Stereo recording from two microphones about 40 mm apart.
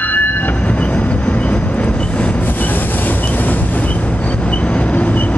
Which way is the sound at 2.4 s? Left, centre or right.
Left.